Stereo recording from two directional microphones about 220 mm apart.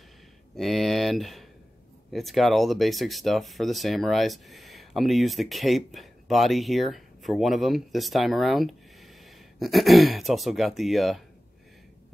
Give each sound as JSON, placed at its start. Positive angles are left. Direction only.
{"t": 0.6, "sound": "speech", "side_deg": 0}